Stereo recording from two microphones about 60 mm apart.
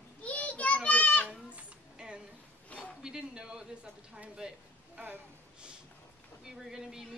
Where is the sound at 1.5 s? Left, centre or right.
Centre.